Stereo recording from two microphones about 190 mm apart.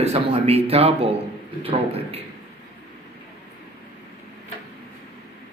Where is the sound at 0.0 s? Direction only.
30° right (ahead or behind).